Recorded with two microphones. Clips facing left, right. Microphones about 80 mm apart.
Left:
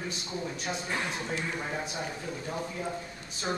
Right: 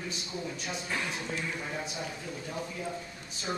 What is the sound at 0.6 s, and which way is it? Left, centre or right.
Speech, left.